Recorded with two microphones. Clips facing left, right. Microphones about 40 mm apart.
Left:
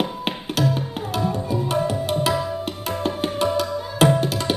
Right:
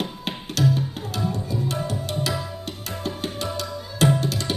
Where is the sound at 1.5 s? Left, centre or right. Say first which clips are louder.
Left 5 dB; centre.